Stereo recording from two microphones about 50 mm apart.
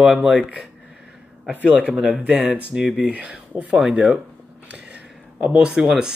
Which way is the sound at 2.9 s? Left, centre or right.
Right.